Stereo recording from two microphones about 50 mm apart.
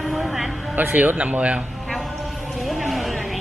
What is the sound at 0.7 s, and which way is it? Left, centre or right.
Speech, right.